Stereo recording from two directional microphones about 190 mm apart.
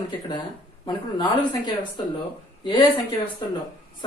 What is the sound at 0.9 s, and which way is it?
Speech, 25° left (ahead or behind).